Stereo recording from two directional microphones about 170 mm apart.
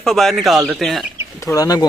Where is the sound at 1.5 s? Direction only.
20° left (ahead or behind).